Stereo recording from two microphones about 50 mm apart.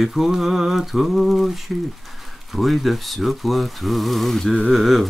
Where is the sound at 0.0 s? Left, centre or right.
Centre.